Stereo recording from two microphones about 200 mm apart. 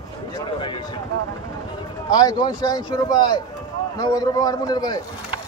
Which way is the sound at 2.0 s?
20° left (ahead or behind).